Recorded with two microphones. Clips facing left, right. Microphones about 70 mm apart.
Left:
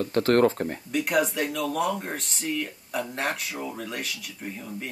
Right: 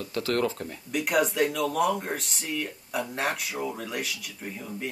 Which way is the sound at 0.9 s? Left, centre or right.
Centre.